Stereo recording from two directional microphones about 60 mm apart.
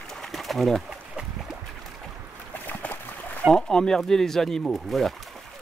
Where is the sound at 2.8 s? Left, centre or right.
Left.